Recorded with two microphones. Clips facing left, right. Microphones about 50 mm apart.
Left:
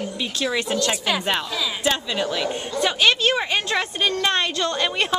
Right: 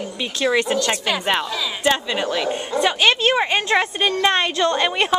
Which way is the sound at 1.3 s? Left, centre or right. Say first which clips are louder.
Right 2 dB; centre.